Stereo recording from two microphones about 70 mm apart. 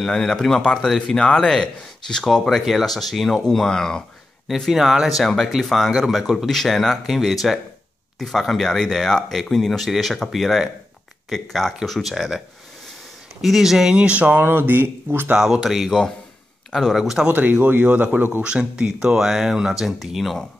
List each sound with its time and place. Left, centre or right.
0.0 s speech: centre
4.5 s speech: centre
13.4 s speech: centre; by 15.3 s right
15.3 s speech: centre
17.3 s speech: right; by 20.3 s centre